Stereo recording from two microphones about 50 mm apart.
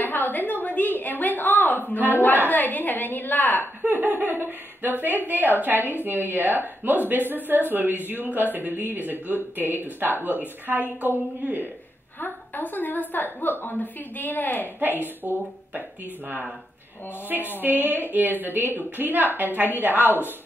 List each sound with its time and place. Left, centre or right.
0.0 s a sound: left
2.5 s a woman's voice: left
3.8 s speech: right
12.2 s a woman's voice: left
15.2 s speech: right
17.6 s speech: right